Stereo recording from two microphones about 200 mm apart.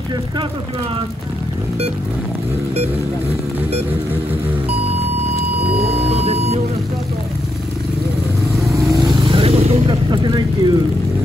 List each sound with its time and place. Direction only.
5.9 s music: 30° right (ahead or behind)
8.7 s vehicle: 15° right (ahead or behind)